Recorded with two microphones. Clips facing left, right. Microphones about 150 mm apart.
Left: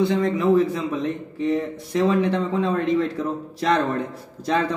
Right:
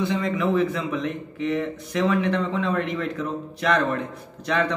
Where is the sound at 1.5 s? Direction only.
30° left (ahead or behind).